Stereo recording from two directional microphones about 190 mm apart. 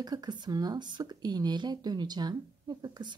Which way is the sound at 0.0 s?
20° right (ahead or behind).